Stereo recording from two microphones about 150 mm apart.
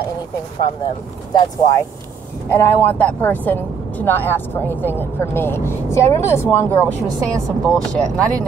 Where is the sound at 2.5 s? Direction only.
10° left (ahead or behind).